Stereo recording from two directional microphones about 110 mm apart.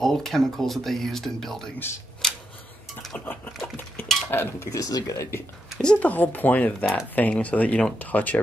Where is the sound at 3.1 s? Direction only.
15° left (ahead or behind); by 5.4 s 30° left (ahead or behind).